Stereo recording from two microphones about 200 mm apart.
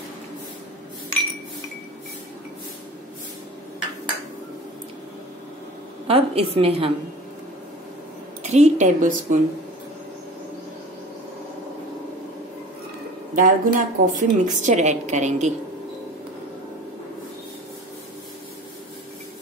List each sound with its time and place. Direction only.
6.0 s a woman's voice: 30° right (ahead or behind)
8.4 s speech: 35° right (ahead or behind)
13.3 s a woman's voice: 40° right (ahead or behind)